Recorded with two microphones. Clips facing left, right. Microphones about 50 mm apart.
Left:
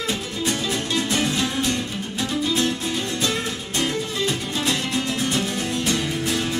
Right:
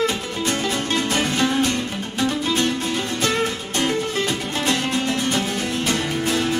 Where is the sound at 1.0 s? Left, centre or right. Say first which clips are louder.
Right 2 dB; right.